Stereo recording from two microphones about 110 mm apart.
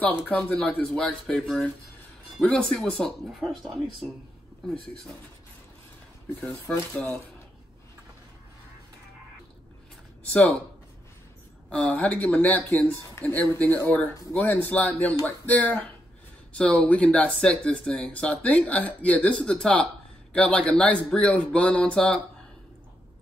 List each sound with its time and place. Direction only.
0.5 s speech: 15° left (ahead or behind)
6.4 s speech: 20° left (ahead or behind)
11.7 s speech: 10° left (ahead or behind)